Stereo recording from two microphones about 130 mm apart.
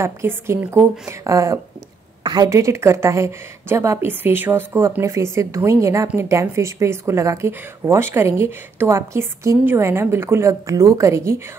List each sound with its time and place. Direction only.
0.0 s speech: 20° right (ahead or behind)